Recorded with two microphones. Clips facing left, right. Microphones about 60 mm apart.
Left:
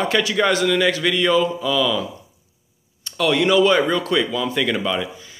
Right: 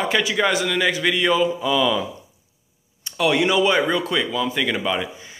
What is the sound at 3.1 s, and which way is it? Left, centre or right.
Speech, centre.